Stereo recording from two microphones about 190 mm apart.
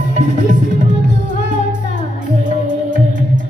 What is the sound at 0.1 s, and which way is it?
Music, 45° right (ahead or behind).